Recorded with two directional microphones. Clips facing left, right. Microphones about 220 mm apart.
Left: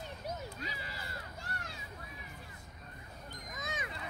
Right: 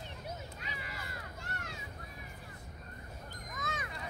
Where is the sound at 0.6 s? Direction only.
35° left (ahead or behind).